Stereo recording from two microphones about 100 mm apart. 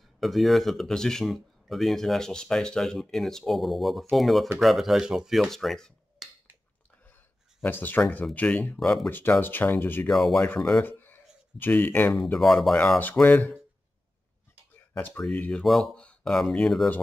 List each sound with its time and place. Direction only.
0.2 s speech: centre (ahead or behind)
7.6 s speech: 20° left (ahead or behind)
9.1 s speech: 20° left (ahead or behind)
10.0 s speech: 5° left (ahead or behind)
10.8 s a sound: 20° left (ahead or behind)
12.4 s speech: centre (ahead or behind)
13.0 s speech: 20° left (ahead or behind)
15.0 s speech: 15° left (ahead or behind)